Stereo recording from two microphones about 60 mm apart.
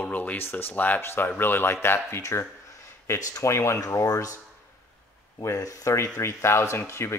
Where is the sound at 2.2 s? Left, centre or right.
Left.